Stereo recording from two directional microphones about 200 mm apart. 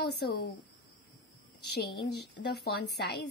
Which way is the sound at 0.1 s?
55° left (ahead or behind).